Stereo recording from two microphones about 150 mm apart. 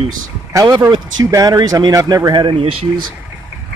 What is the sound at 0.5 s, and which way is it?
Speech, 25° right (ahead or behind).